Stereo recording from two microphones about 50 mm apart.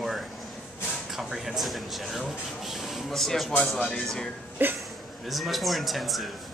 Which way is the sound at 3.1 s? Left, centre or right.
Centre.